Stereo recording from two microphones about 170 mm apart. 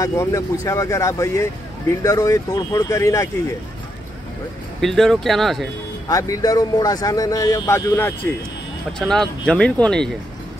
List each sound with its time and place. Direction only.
0.0 s speech: 15° left (ahead or behind)
4.8 s speech: centre (ahead or behind)
6.0 s speech: 20° left (ahead or behind)
9.0 s speech: 5° left (ahead or behind)